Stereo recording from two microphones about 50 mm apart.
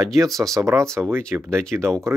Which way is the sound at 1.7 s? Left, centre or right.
Right.